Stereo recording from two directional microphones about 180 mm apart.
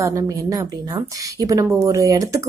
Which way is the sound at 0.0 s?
20° right (ahead or behind).